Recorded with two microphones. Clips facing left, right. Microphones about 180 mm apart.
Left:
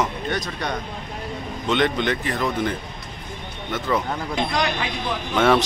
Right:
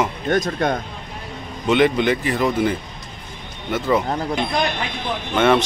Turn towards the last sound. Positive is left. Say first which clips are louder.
# right 2 dB
turn(degrees=0)  # may be behind; listen again after turning